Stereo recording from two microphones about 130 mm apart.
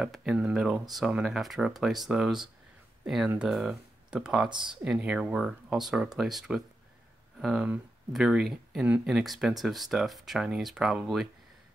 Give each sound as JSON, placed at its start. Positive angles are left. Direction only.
{"t": 0.0, "sound": "speech", "side_deg": 0}
{"t": 4.5, "sound": "speech", "side_deg": -35}
{"t": 4.9, "sound": "speech", "side_deg": -10}